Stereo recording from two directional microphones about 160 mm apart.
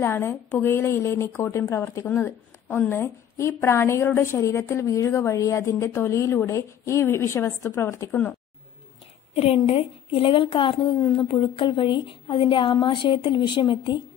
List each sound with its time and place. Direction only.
0.0 s a woman's voice: 15° left (ahead or behind)
9.3 s a woman's voice: 40° left (ahead or behind)